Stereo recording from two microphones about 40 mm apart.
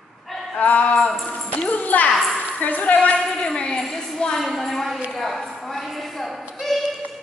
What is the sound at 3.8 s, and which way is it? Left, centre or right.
A woman's voice, centre.